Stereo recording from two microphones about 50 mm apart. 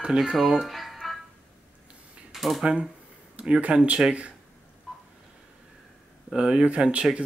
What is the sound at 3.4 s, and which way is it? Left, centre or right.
Speech, right.